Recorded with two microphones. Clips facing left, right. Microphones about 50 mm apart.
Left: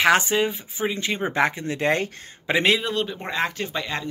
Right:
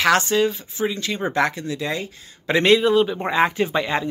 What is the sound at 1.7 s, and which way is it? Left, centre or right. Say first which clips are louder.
Speech: left 3 dB; left.